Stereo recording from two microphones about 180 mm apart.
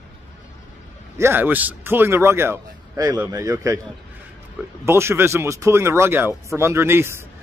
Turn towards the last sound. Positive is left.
turn(degrees=-15)  # may be behind; listen again after turning